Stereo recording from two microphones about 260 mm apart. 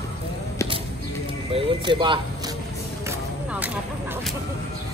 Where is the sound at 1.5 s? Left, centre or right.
Centre.